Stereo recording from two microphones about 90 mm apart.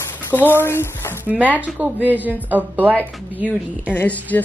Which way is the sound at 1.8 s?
15° right (ahead or behind).